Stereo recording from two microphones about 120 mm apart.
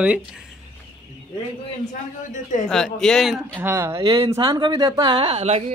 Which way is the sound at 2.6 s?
5° left (ahead or behind).